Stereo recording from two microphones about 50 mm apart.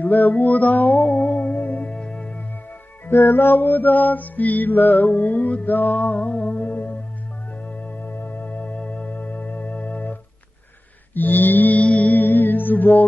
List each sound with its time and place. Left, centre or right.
0.0 s mantra: left
1.9 s music: centre
3.1 s mantra: left
7.6 s music: left
8.7 s organ: left
11.1 s mantra: left
11.8 s music: left